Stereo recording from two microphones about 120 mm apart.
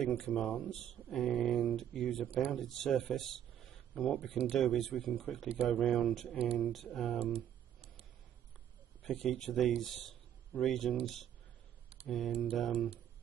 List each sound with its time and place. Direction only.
0.0 s speech: 5° left (ahead or behind)
7.3 s computer keyboard: 55° right (ahead or behind)
9.0 s a man's voice: 5° left (ahead or behind)
12.1 s speech: centre (ahead or behind)